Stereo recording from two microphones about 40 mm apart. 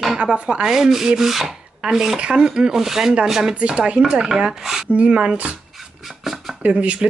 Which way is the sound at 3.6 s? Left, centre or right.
Right.